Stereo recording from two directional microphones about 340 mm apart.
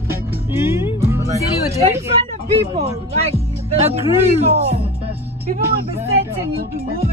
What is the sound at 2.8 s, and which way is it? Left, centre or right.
Speech, centre.